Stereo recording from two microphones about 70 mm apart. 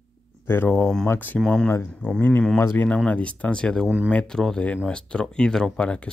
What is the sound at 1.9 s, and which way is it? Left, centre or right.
Speech, left.